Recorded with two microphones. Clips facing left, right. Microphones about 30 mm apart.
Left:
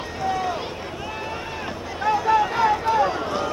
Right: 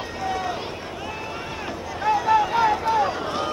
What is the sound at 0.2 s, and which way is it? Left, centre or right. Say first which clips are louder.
Run: left 2 dB; centre.